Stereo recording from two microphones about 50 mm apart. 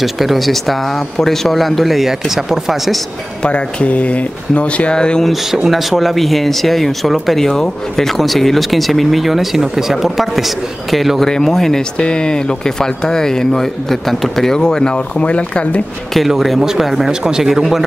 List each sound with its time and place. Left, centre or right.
0.0 s speech: centre
3.4 s speech: left
5.2 s speech: centre
12.0 s speech: centre
15.2 s speech: left
16.3 s speech: centre